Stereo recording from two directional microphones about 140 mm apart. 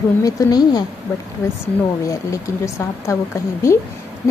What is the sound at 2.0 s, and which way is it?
Speech, 20° left (ahead or behind).